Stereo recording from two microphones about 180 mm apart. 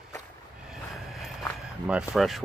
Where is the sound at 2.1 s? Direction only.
Centre (ahead or behind).